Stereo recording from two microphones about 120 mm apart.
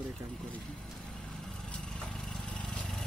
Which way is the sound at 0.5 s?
5° left (ahead or behind).